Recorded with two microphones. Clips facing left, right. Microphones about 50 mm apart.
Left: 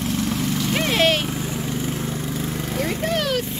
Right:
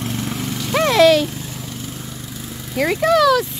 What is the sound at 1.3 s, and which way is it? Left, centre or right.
Vehicle, left.